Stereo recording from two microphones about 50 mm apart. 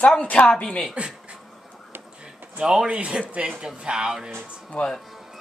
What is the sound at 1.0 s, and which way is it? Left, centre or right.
Speech, right.